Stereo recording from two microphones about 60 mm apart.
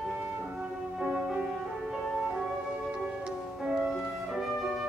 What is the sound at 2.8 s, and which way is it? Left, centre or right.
Music, centre.